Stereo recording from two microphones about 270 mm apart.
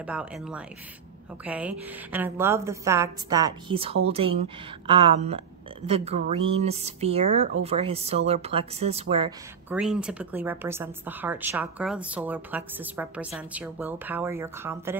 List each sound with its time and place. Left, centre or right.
0.0 s a woman's voice: centre; by 9.3 s right
9.7 s a woman's voice: centre